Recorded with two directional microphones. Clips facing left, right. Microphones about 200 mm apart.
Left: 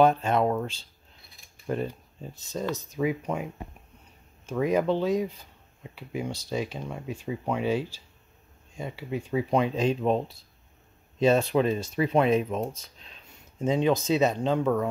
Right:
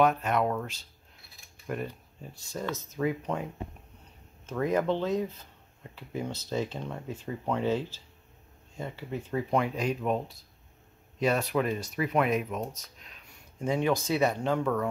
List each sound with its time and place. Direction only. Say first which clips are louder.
0.0 s speech: left 4 dB; 30° left (ahead or behind); by 3.4 s 10° left (ahead or behind)
4.5 s speech: left 3 dB; 15° left (ahead or behind)